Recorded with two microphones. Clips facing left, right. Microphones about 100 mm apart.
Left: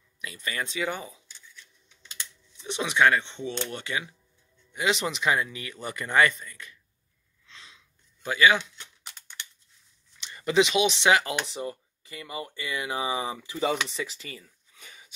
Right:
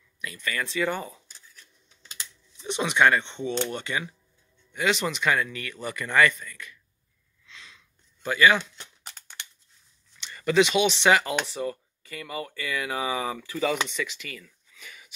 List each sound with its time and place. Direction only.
0.2 s speech: 20° left (ahead or behind)
0.7 s speech: 10° left (ahead or behind)
1.3 s scissors: 40° right (ahead or behind)
2.6 s speech: 5° left (ahead or behind); by 6.8 s 25° left (ahead or behind)
7.4 s a sound: 30° left (ahead or behind)
7.7 s a sound: 10° left (ahead or behind)
8.7 s typing: 40° right (ahead or behind)
10.2 s a sound: 15° left (ahead or behind)
11.0 s speech: 10° left (ahead or behind)
11.4 s speech: 20° left (ahead or behind)